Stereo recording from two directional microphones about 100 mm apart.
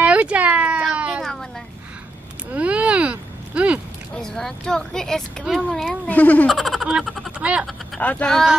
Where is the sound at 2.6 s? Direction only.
15° right (ahead or behind).